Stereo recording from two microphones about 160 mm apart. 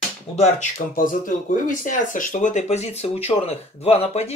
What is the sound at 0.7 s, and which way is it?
Speech, 60° left (ahead or behind).